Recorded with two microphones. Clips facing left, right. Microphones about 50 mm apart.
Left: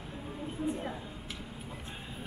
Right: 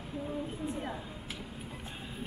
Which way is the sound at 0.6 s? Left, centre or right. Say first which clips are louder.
Left 2 dB; centre.